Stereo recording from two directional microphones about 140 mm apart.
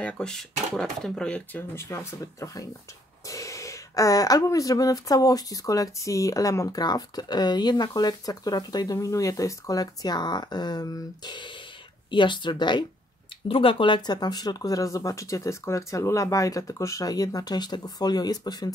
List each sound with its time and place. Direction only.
0.0 s speech: 5° left (ahead or behind); by 18.7 s 30° left (ahead or behind)